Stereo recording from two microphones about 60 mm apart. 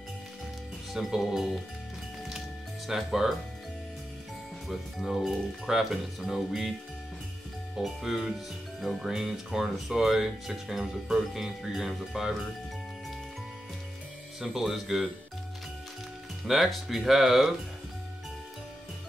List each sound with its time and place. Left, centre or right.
0.9 s speech: centre
2.9 s speech: centre
4.6 s speech: centre
7.7 s speech: centre
14.4 s speech: centre
16.4 s speech: centre